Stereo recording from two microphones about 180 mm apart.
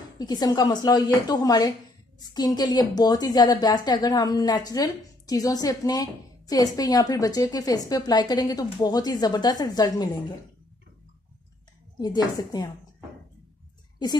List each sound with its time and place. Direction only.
0.2 s a woman's voice: 20° left (ahead or behind)
12.0 s a woman's voice: 20° left (ahead or behind)